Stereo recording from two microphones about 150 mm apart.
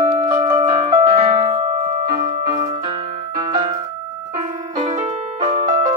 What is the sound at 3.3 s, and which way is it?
Music, 25° right (ahead or behind).